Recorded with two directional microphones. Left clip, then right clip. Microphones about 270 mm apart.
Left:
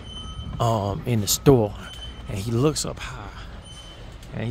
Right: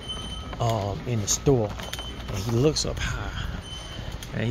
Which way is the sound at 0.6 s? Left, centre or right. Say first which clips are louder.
Left 4 dB; left.